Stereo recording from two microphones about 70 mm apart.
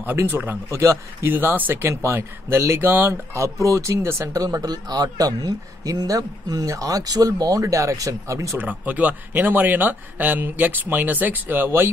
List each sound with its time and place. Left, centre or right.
0.3 s speech: right
0.7 s speech: right
1.3 s speech: right
1.9 s speech: right
3.1 s speech: right
4.4 s a man's voice: right
8.5 s speech: right